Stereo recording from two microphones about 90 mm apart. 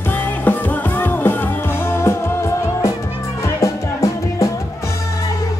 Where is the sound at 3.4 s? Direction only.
35° left (ahead or behind).